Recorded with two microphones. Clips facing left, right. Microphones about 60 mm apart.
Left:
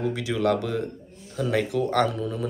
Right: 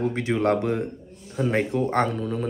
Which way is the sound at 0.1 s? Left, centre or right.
Right.